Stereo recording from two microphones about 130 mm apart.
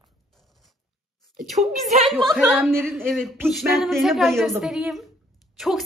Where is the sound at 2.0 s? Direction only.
Centre (ahead or behind).